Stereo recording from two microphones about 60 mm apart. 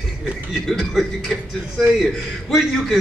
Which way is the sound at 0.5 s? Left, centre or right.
Centre.